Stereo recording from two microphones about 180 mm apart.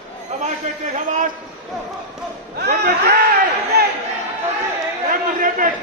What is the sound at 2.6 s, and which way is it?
Speech, 65° right (ahead or behind).